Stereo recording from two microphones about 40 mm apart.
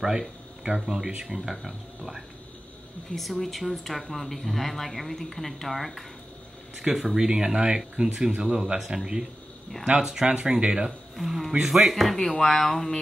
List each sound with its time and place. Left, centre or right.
0.7 s speech: centre
6.8 s speech: centre
10.6 s speech: right
11.1 s speech: centre